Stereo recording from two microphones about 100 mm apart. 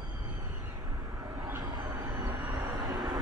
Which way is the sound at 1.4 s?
25° right (ahead or behind).